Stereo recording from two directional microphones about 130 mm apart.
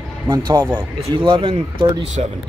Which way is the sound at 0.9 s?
45° right (ahead or behind).